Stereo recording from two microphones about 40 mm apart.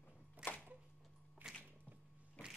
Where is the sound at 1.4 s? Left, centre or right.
Right.